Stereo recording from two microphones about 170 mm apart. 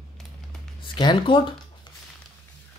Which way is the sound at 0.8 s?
30° left (ahead or behind).